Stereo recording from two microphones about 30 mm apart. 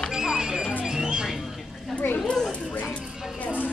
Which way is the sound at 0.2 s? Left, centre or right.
Centre.